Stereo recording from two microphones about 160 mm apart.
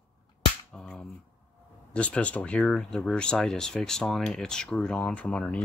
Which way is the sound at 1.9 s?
10° left (ahead or behind).